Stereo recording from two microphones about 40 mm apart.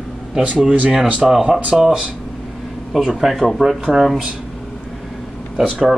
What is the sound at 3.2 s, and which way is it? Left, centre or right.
Speech, centre.